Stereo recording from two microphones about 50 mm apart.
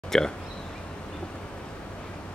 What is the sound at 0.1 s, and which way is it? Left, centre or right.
Speech, centre.